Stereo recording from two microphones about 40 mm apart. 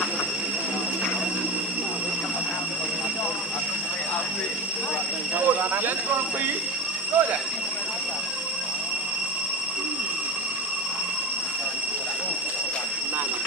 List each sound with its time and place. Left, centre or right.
7.2 s speech: right